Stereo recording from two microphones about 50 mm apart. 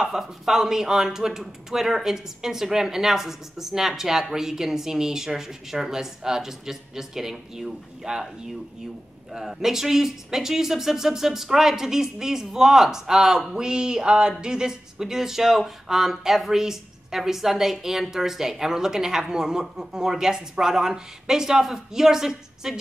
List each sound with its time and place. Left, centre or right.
0.0 s speech: centre
9.3 s speech: centre